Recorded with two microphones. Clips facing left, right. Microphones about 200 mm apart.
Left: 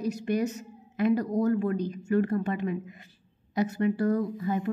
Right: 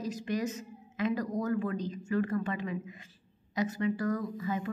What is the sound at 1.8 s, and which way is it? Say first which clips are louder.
Speech: left 5 dB; 60° left (ahead or behind).